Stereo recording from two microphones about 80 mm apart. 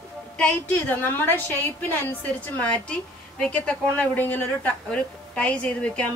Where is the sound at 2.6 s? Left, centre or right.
Centre.